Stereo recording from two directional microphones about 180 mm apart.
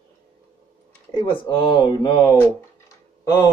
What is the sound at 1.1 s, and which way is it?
A man's voice, 25° left (ahead or behind).